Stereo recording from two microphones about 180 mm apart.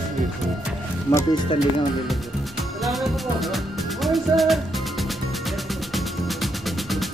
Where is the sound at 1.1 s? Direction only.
25° left (ahead or behind).